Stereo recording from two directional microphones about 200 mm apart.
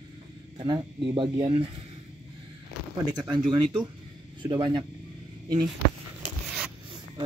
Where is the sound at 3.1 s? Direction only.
20° right (ahead or behind).